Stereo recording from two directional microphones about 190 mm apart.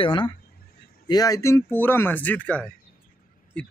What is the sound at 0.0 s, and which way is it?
A man's voice, 25° left (ahead or behind).